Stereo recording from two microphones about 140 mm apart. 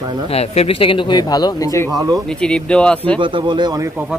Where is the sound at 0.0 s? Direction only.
30° right (ahead or behind).